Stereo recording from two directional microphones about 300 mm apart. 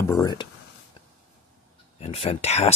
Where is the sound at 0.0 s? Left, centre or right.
Centre.